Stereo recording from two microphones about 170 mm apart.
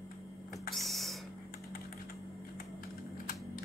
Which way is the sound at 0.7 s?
Centre (ahead or behind).